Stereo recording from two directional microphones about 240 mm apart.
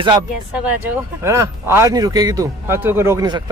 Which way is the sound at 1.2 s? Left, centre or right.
Centre.